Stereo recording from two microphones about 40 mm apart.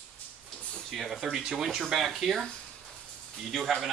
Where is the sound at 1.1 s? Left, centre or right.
Centre.